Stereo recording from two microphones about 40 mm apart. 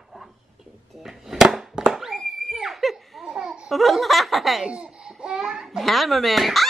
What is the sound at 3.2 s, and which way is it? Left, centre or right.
Babbling, centre.